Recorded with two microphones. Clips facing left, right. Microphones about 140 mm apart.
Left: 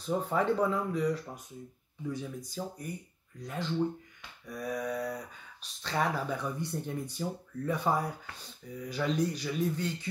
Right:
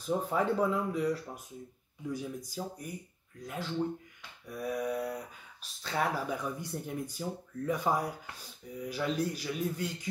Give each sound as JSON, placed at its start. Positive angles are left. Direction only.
{"t": 0.0, "sound": "speech", "side_deg": -5}